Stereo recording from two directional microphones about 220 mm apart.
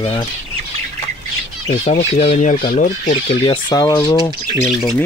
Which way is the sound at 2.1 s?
30° left (ahead or behind).